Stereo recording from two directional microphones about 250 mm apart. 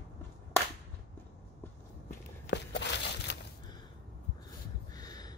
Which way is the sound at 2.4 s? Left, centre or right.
Left.